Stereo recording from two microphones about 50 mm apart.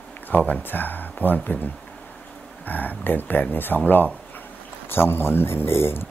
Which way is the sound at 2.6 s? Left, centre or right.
Left.